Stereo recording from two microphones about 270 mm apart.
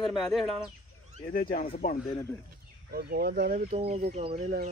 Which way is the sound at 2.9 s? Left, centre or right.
Right.